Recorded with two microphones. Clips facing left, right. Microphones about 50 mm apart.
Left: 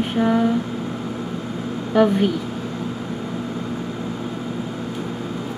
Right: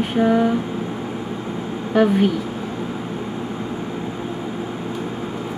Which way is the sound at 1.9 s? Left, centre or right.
Centre.